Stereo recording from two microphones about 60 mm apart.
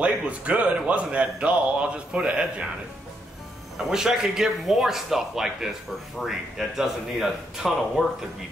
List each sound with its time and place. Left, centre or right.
0.0 s speech: right
3.7 s a man's voice: centre